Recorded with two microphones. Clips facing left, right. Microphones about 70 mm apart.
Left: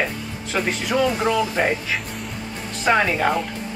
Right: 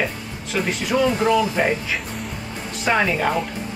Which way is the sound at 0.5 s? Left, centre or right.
Centre.